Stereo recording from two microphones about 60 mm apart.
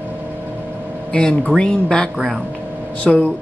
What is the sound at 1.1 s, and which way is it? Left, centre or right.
Speech, centre.